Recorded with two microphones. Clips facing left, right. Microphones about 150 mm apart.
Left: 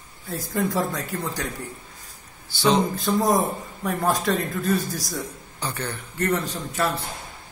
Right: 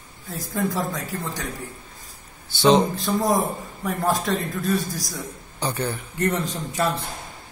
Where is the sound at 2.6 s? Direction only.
20° right (ahead or behind).